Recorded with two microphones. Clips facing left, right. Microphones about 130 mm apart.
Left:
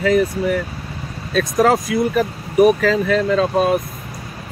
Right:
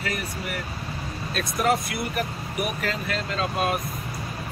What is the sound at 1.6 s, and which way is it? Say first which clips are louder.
Speech: left 8 dB; 90° left.